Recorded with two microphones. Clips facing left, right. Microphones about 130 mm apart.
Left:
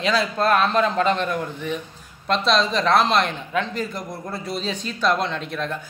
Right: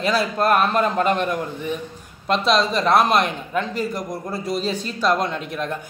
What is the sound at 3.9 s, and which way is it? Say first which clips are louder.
Speech: right 3 dB; 45° right (ahead or behind).